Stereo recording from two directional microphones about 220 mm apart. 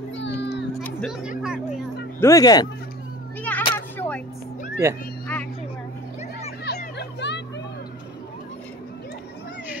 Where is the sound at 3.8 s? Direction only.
10° left (ahead or behind).